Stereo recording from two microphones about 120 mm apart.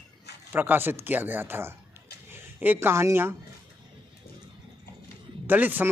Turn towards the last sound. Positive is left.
turn(degrees=-15)  # may be behind; listen again after turning